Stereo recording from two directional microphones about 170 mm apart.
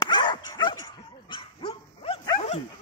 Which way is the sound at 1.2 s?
30° left (ahead or behind).